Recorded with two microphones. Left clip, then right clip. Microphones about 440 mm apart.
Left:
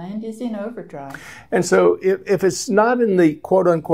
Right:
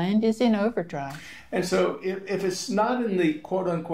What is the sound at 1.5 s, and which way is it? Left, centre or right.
Speech, left.